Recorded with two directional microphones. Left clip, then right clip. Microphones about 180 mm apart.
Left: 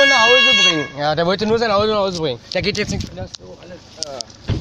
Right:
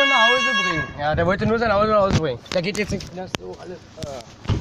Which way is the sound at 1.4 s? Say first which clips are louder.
Left 3 dB; 30° left (ahead or behind).